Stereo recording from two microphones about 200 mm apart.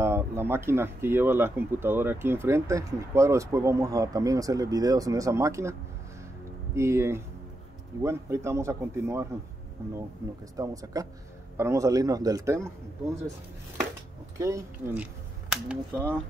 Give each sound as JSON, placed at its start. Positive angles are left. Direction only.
{"t": 0.0, "sound": "speech", "side_deg": -10}
{"t": 10.5, "sound": "speech", "side_deg": -15}
{"t": 14.4, "sound": "speech", "side_deg": -15}